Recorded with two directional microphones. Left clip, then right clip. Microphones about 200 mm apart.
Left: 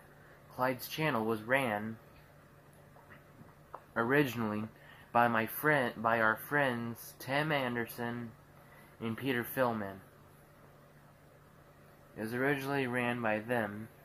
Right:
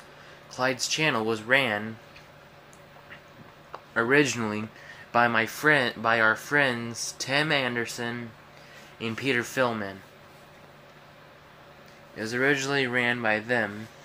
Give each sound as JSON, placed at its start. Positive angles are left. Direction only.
{"t": 0.9, "sound": "speech", "side_deg": -10}
{"t": 3.9, "sound": "speech", "side_deg": -15}
{"t": 12.2, "sound": "speech", "side_deg": -10}